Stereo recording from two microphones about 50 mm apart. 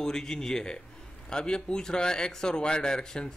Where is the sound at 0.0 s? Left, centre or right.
Centre.